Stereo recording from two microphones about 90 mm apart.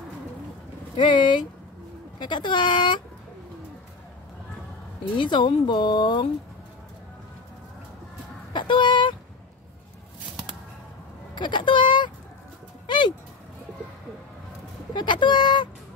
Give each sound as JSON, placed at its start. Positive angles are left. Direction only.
{"t": 0.9, "sound": "speech", "side_deg": 60}
{"t": 5.1, "sound": "speech", "side_deg": 60}
{"t": 8.5, "sound": "speech", "side_deg": 60}
{"t": 11.3, "sound": "speech", "side_deg": 60}
{"t": 12.8, "sound": "bird", "side_deg": 55}
{"t": 15.0, "sound": "speech", "side_deg": 60}